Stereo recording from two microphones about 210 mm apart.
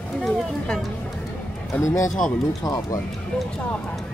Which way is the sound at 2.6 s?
15° left (ahead or behind).